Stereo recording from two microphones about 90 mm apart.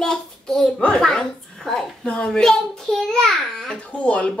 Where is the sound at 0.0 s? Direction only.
5° left (ahead or behind).